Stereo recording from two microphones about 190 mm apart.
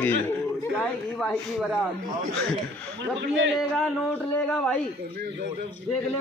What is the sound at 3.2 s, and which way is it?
Speech, 75° right (ahead or behind).